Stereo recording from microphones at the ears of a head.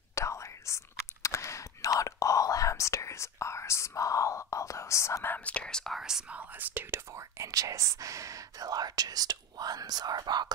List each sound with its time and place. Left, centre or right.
0.1 s whispering: left
1.8 s whispering: left
5.6 s speech: centre
6.0 s speech: right